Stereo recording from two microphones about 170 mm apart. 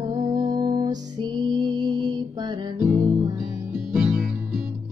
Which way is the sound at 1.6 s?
25° right (ahead or behind).